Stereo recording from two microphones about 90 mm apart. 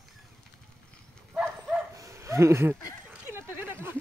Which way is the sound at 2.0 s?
35° right (ahead or behind).